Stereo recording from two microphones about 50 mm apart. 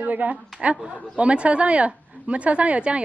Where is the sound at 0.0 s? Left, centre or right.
Right.